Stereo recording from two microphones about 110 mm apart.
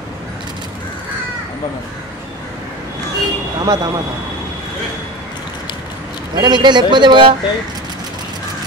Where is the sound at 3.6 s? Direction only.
35° right (ahead or behind).